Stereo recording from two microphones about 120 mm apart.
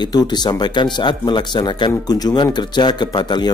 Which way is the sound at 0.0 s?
35° left (ahead or behind).